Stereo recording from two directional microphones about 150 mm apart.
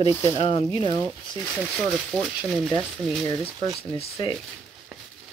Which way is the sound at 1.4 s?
10° right (ahead or behind).